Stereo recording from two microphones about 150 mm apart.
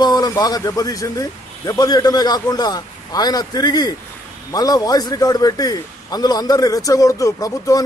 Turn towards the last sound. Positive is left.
turn(degrees=25)  # may be behind; listen again after turning